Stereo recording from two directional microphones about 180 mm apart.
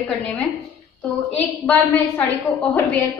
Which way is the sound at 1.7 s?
15° left (ahead or behind).